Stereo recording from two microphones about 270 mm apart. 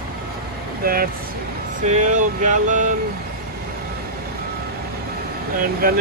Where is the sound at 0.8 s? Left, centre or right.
Right.